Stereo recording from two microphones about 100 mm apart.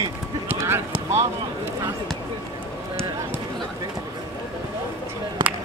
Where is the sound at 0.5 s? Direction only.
25° right (ahead or behind).